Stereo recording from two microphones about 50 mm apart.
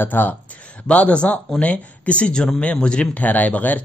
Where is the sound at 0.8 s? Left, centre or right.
Left.